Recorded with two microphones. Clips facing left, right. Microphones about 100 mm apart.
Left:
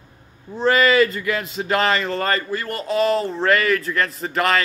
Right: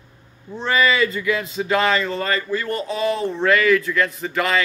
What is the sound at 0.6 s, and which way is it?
A man's voice, 40° left (ahead or behind).